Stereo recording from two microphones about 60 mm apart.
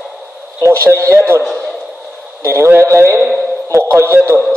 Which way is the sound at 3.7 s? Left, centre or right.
Right.